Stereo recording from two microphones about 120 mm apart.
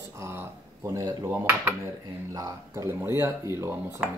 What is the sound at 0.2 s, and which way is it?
Speech, 20° right (ahead or behind).